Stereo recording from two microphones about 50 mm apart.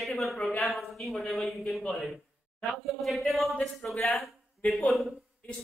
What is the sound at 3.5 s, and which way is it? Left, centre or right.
Speech, left.